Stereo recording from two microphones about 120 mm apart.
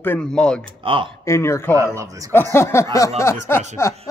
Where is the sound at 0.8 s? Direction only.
45° right (ahead or behind).